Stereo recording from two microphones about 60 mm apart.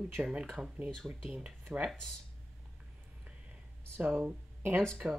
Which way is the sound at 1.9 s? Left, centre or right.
Centre.